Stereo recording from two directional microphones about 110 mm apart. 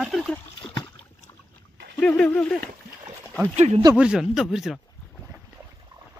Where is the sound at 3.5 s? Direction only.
80° right.